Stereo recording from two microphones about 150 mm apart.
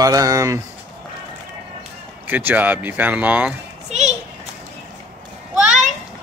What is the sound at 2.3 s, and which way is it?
Speech, 15° right (ahead or behind).